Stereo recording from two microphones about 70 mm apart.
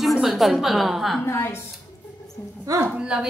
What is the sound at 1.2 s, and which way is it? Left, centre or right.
Speech, left.